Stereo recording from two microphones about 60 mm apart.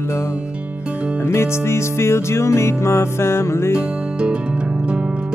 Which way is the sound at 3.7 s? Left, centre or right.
Centre.